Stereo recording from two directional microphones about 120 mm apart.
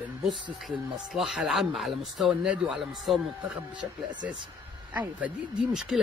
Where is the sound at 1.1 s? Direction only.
Centre (ahead or behind).